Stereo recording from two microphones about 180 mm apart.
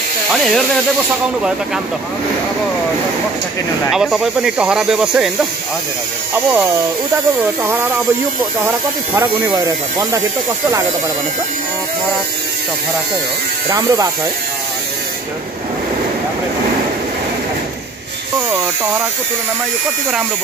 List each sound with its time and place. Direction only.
0.3 s speech: centre (ahead or behind)
3.9 s speech: 5° right (ahead or behind)
8.6 s speech: 10° right (ahead or behind)
13.7 s speech: 20° right (ahead or behind)